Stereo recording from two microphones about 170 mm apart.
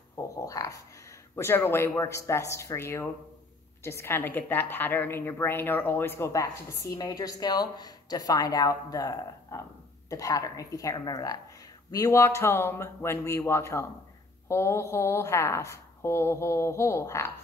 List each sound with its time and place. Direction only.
0.2 s a woman's voice: 20° left (ahead or behind)